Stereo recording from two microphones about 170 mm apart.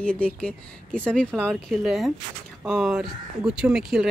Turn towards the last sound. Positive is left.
turn(degrees=-5)  # may be behind; listen again after turning